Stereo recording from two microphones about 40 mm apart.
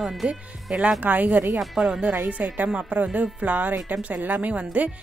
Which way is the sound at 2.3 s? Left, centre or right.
Right.